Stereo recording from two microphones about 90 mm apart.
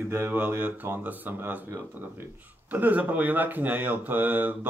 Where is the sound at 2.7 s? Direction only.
20° right (ahead or behind).